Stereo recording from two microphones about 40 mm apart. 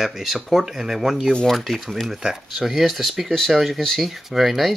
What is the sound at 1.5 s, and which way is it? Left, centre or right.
Speech, centre.